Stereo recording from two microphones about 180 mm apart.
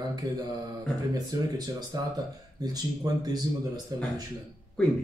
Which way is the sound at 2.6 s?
20° right (ahead or behind).